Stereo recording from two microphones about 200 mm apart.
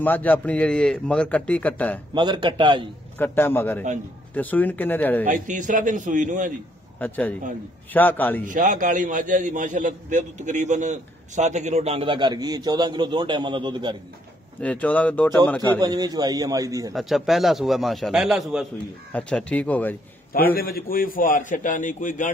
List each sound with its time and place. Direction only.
0.0 s a man's voice: 10° left (ahead or behind)
2.1 s a man's voice: 20° right (ahead or behind)
3.2 s a man's voice: 10° left (ahead or behind)
5.2 s a man's voice: 40° right (ahead or behind)
7.0 s a man's voice: 10° left (ahead or behind)
8.5 s a man's voice: 40° right (ahead or behind); by 13.9 s 25° right (ahead or behind)
14.6 s a man's voice: 5° left (ahead or behind)
15.8 s a man's voice: 20° right (ahead or behind)
16.9 s a man's voice: centre (ahead or behind)
20.3 s a man's voice: 45° left (ahead or behind)